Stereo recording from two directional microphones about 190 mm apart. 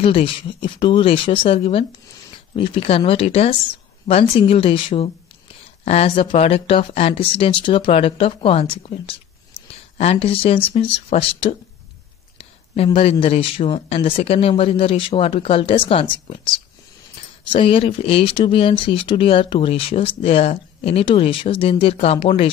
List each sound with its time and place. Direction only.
0.0 s speech: 30° left (ahead or behind)